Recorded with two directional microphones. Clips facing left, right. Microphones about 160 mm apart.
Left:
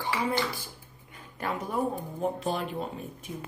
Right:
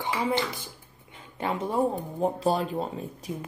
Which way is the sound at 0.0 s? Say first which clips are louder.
Right 2 dB; 20° right (ahead or behind).